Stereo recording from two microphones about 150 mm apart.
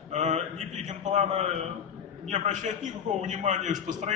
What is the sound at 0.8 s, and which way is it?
A man's voice, 50° right (ahead or behind).